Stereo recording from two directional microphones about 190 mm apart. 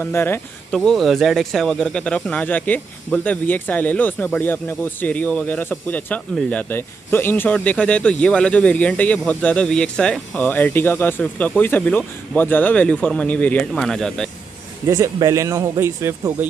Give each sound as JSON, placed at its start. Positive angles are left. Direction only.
{"t": 0.0, "sound": "speech", "side_deg": 10}
{"t": 14.9, "sound": "a man's voice", "side_deg": -15}